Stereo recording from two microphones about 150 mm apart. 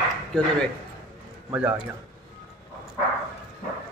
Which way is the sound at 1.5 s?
10° right (ahead or behind).